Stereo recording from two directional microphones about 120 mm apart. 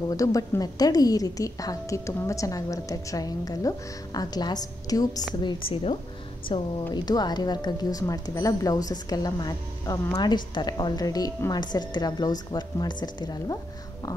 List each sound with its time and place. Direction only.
0.1 s speech: 30° left (ahead or behind)
5.4 s a woman's voice: 45° left (ahead or behind)